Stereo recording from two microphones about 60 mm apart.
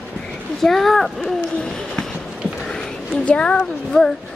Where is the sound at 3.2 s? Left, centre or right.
Centre.